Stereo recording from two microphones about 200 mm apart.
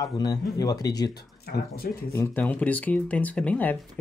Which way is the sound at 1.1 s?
50° left (ahead or behind).